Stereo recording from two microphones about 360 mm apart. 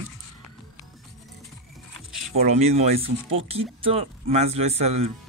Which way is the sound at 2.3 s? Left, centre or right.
Centre.